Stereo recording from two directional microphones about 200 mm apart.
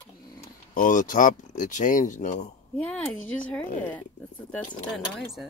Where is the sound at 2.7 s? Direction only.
5° left (ahead or behind).